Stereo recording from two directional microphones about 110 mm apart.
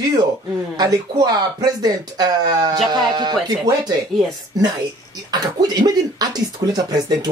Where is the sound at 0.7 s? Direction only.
35° right (ahead or behind).